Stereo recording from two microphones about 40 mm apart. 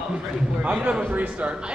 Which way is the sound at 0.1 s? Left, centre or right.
Right.